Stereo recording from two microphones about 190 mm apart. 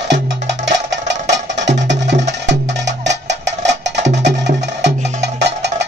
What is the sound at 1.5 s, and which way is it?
Music, 70° right (ahead or behind).